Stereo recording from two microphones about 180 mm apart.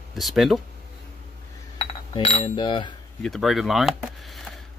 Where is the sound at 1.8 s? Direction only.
30° left (ahead or behind).